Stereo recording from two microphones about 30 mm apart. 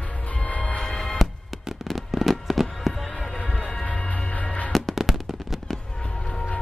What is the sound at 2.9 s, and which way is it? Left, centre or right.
Music, centre.